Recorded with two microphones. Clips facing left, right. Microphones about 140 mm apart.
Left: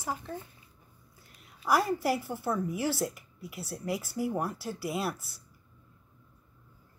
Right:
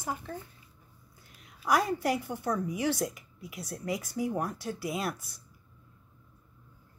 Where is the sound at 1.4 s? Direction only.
5° left (ahead or behind).